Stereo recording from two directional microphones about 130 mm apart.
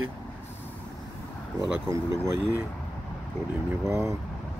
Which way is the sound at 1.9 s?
20° right (ahead or behind).